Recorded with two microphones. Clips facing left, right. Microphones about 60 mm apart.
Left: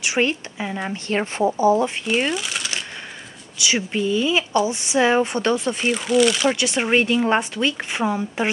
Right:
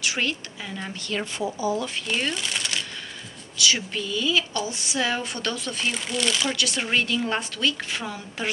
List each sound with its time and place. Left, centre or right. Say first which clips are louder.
0.0 s speech: left 6 dB; left
2.3 s coin: left 2 dB; centre
3.5 s speech: left 3 dB; left
5.9 s speech: left 11 dB; centre
6.5 s speech: left 6 dB; left